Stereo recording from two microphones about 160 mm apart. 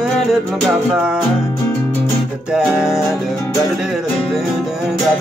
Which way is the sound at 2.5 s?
5° right (ahead or behind).